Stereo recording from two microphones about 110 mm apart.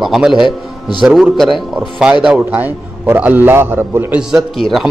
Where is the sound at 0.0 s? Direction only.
5° right (ahead or behind).